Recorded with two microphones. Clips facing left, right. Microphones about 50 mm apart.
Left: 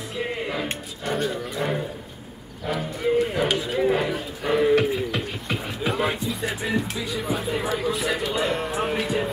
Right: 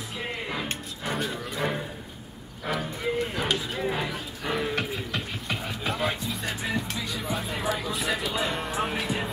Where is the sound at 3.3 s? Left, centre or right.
Centre.